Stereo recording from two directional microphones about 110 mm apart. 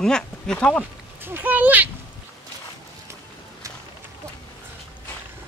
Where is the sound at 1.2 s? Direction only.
15° right (ahead or behind).